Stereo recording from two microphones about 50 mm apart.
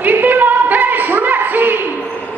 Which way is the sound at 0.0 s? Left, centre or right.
Right.